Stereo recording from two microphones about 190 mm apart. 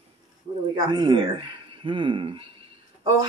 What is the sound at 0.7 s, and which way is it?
A woman's voice, 25° right (ahead or behind).